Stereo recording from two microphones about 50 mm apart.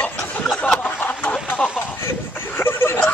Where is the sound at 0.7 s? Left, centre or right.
Left.